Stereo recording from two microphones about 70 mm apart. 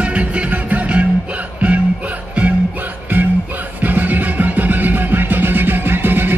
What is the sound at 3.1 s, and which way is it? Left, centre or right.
Music, right.